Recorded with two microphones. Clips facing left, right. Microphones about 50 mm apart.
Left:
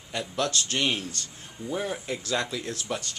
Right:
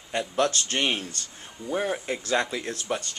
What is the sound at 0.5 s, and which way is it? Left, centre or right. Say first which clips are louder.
Speech: right 1 dB; centre.